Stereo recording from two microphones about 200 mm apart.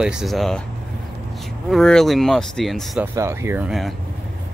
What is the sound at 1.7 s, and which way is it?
Speech, centre (ahead or behind).